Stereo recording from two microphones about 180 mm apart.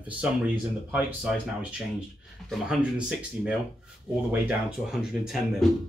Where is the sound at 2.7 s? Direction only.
5° right (ahead or behind).